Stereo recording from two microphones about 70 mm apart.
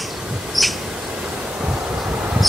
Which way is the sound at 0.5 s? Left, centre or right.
Centre.